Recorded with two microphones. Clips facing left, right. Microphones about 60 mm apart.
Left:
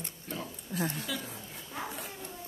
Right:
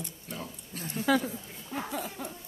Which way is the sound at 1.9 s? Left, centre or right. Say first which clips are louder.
Right 6 dB; right.